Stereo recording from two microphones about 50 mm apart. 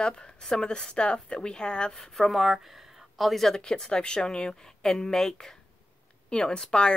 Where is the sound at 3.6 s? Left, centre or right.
Centre.